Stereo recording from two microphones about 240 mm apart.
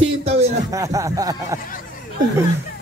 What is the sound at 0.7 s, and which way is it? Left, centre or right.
Speech, centre.